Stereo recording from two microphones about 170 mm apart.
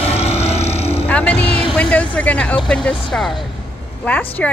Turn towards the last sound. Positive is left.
turn(degrees=10)  # may be behind; listen again after turning